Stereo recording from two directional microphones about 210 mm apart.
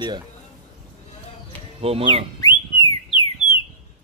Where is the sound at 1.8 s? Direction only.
25° right (ahead or behind).